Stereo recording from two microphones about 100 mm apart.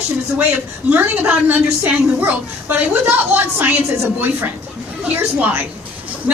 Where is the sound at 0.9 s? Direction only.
15° right (ahead or behind).